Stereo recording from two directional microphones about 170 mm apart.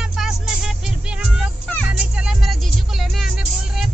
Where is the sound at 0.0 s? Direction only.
Centre (ahead or behind).